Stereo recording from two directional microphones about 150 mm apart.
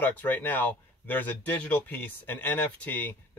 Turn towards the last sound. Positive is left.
turn(degrees=10)  # may be behind; listen again after turning